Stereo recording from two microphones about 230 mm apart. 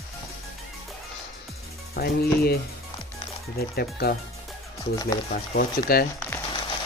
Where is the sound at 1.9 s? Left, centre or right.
Left.